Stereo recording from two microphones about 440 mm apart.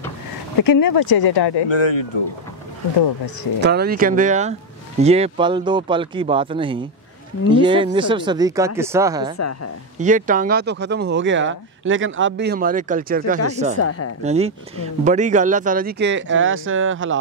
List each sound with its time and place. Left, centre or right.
0.6 s speech: left
3.6 s speech: right
9.4 s speech: left
9.9 s speech: centre
13.7 s speech: left
14.2 s speech: centre